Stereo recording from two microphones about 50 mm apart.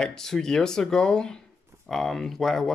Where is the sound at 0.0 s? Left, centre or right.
Centre.